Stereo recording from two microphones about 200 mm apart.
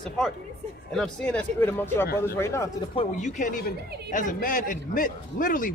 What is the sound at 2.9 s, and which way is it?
A man's voice, 30° left (ahead or behind).